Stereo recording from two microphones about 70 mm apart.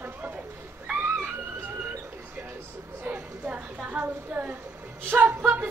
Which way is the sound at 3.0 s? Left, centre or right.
Right.